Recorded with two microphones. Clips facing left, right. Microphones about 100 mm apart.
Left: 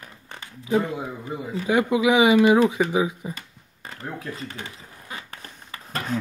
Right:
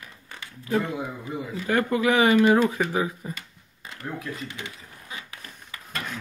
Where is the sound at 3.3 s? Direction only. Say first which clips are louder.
Left 1 dB; 45° left (ahead or behind).